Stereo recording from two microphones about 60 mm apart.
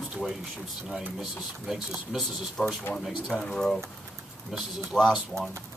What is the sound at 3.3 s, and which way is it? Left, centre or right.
Speech, centre.